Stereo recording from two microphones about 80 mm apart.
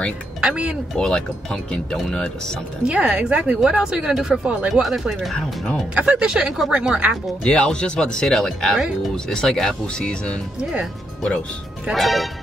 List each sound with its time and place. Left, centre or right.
0.4 s speech: centre
0.9 s speech: centre
2.9 s speech: centre
4.8 s speech: centre
5.9 s speech: centre
7.5 s speech: centre
10.6 s speech: centre
11.9 s speech: centre